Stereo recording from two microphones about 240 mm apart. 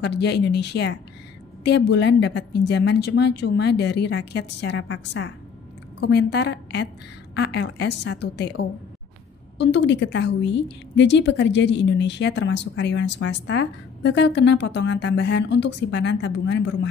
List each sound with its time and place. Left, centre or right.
0.0 s a woman's voice: left